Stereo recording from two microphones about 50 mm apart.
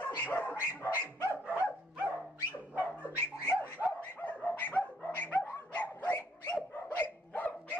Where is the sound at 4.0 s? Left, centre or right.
Left.